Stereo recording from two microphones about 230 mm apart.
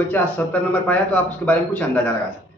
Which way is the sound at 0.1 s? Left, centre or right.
Centre.